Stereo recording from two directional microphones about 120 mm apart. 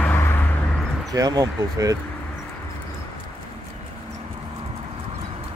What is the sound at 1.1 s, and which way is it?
Speech, 30° right (ahead or behind).